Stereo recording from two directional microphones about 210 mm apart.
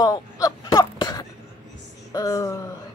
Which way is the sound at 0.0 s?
20° left (ahead or behind).